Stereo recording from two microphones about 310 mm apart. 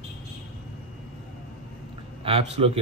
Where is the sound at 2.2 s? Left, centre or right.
Centre.